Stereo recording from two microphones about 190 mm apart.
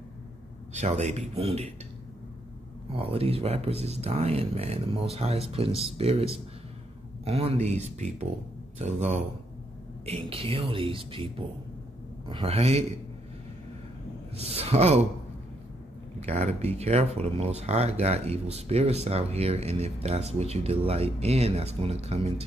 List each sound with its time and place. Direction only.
0.7 s speech: 35° right (ahead or behind)
2.9 s speech: 30° right (ahead or behind)
14.3 s speech: 30° right (ahead or behind)
16.2 s speech: 35° right (ahead or behind)